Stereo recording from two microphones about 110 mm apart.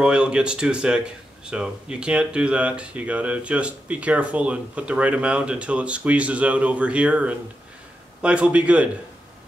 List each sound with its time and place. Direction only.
0.0 s speech: 10° right (ahead or behind)